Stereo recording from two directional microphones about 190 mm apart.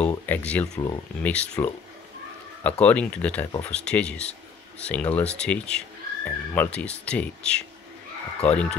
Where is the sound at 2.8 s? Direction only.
5° left (ahead or behind).